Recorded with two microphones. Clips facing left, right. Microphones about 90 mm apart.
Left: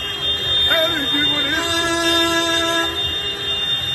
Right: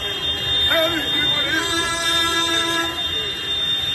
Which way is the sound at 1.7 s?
70° left (ahead or behind).